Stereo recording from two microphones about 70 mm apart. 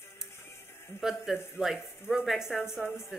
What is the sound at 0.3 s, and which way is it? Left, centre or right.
Music, left.